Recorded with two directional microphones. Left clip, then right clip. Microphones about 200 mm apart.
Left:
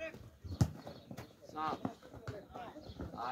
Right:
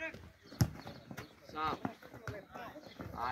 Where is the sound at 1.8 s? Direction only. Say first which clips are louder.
Right 1 dB; 20° left (ahead or behind).